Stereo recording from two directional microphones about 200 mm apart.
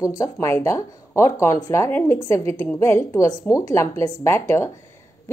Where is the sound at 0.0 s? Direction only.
15° left (ahead or behind).